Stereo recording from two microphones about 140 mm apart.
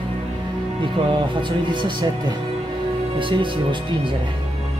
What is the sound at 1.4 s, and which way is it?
Speech, 35° right (ahead or behind).